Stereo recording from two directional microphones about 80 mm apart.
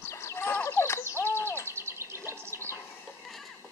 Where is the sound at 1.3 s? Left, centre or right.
Left.